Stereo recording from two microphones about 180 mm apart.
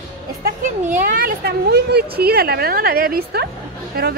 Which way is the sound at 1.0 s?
55° right (ahead or behind).